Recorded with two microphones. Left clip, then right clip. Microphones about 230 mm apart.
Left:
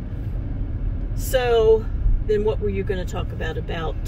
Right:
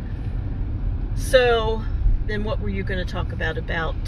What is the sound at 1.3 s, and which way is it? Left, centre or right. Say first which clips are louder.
Speech: left 1 dB; centre.